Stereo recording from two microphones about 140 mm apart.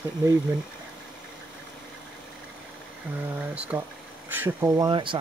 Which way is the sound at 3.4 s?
10° right (ahead or behind).